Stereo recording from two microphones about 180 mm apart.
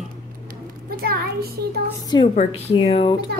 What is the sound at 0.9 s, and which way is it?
Speech, 60° right (ahead or behind).